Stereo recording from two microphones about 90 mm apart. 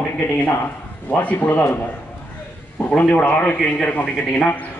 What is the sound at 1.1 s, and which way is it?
Speech, 20° left (ahead or behind).